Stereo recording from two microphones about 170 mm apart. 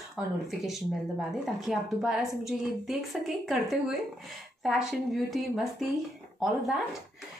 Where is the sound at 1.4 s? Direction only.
Centre (ahead or behind).